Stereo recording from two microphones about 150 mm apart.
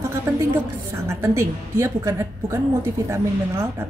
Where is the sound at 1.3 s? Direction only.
20° right (ahead or behind).